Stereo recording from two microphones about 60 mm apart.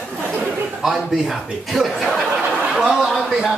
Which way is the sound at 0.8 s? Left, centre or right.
Centre.